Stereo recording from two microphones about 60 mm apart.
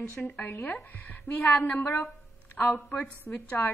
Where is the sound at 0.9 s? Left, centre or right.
Left.